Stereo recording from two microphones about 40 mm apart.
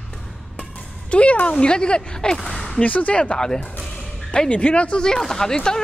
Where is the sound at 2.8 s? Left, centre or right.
Left.